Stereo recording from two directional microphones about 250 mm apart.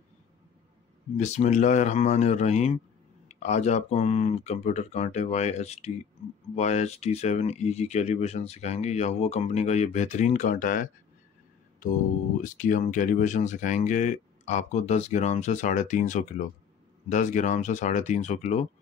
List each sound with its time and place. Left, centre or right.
1.1 s speech: left
12.4 s speech: left